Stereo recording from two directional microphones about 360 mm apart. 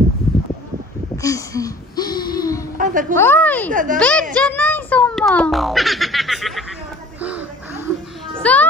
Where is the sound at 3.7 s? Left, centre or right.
Right.